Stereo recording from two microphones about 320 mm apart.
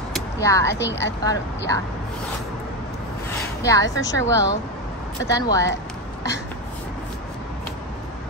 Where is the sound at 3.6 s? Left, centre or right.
Centre.